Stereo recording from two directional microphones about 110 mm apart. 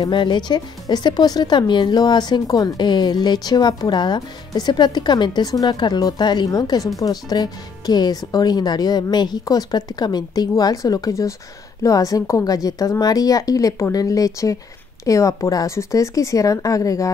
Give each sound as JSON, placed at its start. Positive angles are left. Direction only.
{"t": 0.0, "sound": "speech", "side_deg": 45}